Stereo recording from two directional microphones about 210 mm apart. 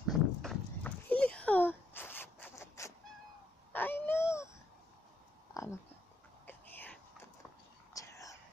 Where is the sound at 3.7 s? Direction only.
10° left (ahead or behind).